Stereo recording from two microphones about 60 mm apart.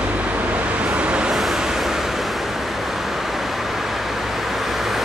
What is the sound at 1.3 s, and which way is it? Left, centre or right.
Vehicle, centre.